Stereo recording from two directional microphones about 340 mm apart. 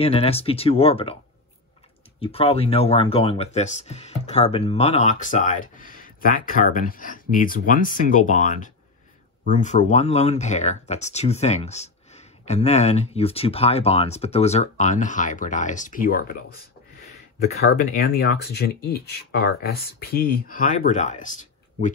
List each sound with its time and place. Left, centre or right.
0.0 s speech: centre
2.1 s speech: centre